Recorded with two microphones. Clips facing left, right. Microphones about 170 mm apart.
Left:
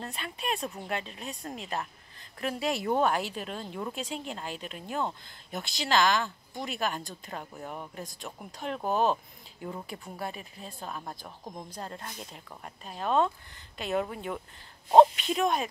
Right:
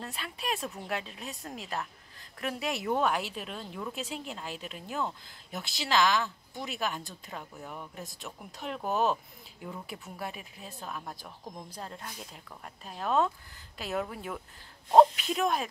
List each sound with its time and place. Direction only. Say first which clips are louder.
0.0 s speech: left 2 dB; centre (ahead or behind)
7.6 s speech: left 3 dB; 30° left (ahead or behind)
7.9 s speech: left 2 dB; 5° right (ahead or behind)
10.1 s speech: left 2 dB; 5° right (ahead or behind)
11.2 s speech: left 2 dB; 15° left (ahead or behind)
11.7 s speech: left 2 dB; centre (ahead or behind)